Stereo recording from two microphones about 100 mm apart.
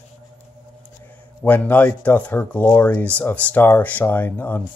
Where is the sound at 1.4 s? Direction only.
15° left (ahead or behind).